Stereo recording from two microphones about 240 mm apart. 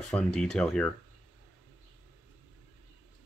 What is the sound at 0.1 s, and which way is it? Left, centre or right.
Speech, centre.